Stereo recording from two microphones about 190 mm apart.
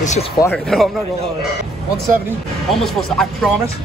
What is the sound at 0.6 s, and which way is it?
Speech, centre (ahead or behind).